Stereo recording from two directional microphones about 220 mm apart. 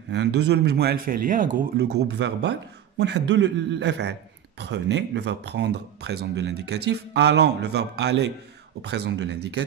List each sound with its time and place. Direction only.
0.1 s speech: 50° right (ahead or behind)